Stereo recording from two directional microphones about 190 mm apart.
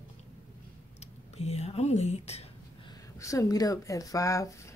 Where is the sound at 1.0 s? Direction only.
35° left (ahead or behind).